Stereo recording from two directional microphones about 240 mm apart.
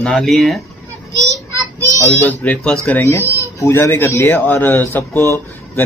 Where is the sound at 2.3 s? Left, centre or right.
Centre.